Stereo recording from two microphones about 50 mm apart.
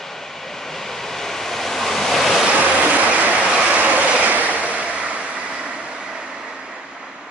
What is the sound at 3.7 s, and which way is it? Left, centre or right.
Vehicle, right.